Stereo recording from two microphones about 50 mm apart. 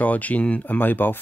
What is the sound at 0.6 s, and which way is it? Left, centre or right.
Speech, left.